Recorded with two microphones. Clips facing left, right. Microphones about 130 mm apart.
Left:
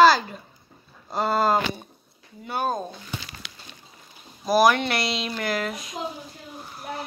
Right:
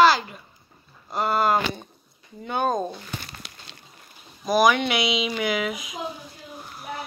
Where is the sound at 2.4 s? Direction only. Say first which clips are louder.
Right 2 dB; 5° left (ahead or behind).